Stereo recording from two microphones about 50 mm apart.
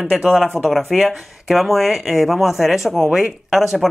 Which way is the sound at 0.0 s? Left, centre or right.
Centre.